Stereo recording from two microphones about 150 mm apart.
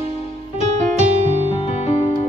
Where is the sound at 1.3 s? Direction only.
45° left (ahead or behind).